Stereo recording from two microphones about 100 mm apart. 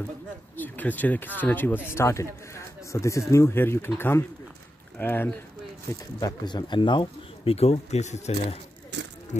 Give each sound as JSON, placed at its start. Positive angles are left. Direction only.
{"t": 0.6, "sound": "speech", "side_deg": 15}
{"t": 6.1, "sound": "speech", "side_deg": 45}
{"t": 7.5, "sound": "speech", "side_deg": 90}